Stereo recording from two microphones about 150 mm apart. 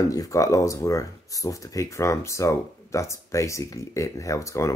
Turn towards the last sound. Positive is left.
turn(degrees=20)  # may be behind; listen again after turning